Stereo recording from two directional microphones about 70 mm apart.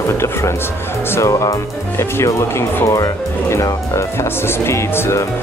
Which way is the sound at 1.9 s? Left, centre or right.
Left.